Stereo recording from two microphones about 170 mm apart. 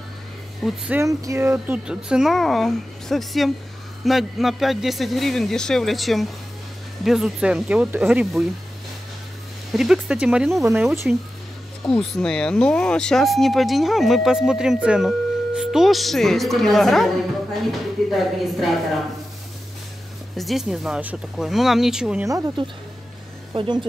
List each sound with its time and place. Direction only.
0.7 s speech: 5° right (ahead or behind)
1.0 s speech: 15° right (ahead or behind)
9.7 s speech: 5° right (ahead or behind)
11.8 s speech: 5° left (ahead or behind)
20.3 s speech: centre (ahead or behind)
22.2 s speech: 20° right (ahead or behind)